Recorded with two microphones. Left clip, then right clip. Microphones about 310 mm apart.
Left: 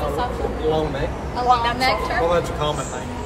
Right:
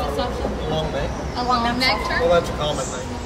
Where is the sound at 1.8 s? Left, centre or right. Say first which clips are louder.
Even; centre.